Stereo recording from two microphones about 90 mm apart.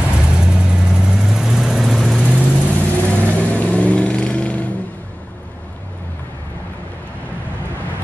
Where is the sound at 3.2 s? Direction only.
15° left (ahead or behind).